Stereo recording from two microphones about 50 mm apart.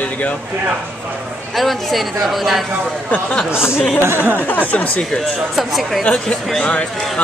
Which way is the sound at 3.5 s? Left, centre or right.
Left.